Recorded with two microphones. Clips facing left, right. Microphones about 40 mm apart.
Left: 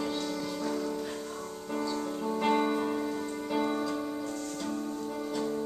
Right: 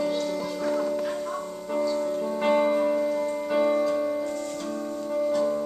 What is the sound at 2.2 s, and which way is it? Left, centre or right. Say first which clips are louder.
Music: right 4 dB; centre.